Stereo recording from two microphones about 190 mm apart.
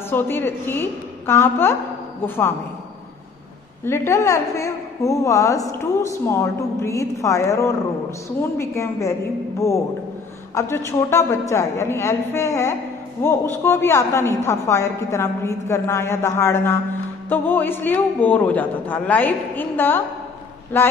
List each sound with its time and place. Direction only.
0.1 s a woman's voice: 10° left (ahead or behind)
3.8 s a woman's voice: 15° left (ahead or behind)